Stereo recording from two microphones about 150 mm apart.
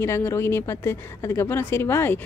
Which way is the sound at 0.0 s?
15° left (ahead or behind).